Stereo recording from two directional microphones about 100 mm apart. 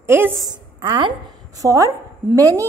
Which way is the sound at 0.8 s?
55° right (ahead or behind).